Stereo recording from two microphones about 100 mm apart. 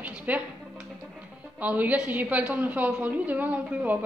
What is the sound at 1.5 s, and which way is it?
Speech, 15° right (ahead or behind).